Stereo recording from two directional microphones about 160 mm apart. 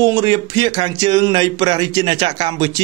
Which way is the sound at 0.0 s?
25° right (ahead or behind).